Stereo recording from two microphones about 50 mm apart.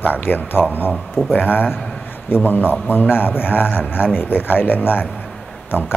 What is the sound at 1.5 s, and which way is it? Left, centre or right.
Speech, left.